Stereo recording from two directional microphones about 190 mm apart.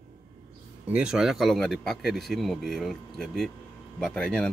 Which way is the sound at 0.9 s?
5° right (ahead or behind).